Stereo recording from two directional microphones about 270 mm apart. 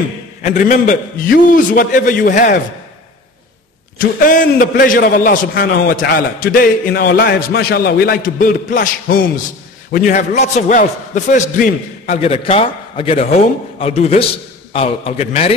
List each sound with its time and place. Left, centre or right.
0.4 s a man's voice: left
4.2 s a man's voice: left